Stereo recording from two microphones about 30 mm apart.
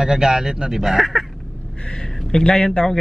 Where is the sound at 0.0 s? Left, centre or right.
Centre.